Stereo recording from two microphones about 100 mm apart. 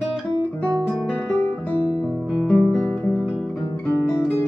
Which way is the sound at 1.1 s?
15° left (ahead or behind).